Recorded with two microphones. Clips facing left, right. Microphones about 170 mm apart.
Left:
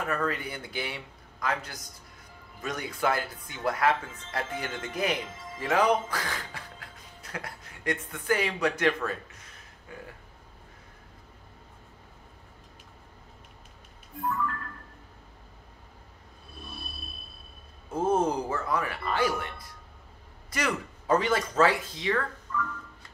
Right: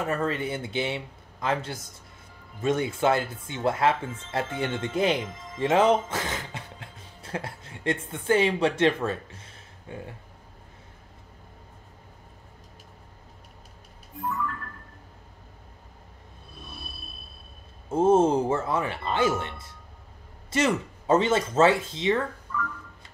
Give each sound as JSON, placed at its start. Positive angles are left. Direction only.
{"t": 0.0, "sound": "speech", "side_deg": -25}
{"t": 17.8, "sound": "speech", "side_deg": -25}